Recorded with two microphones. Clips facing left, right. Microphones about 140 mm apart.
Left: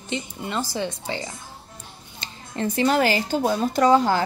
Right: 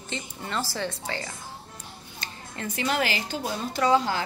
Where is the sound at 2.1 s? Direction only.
30° left (ahead or behind).